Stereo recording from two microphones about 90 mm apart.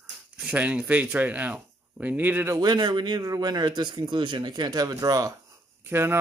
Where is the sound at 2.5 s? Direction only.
50° right (ahead or behind).